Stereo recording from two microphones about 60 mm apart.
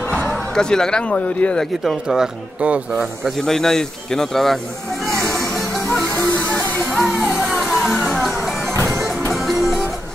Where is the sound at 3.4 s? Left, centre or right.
Centre.